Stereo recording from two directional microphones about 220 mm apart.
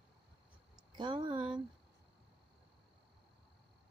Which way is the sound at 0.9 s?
20° right (ahead or behind).